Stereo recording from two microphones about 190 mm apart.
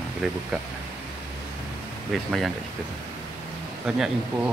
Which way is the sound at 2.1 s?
Centre (ahead or behind).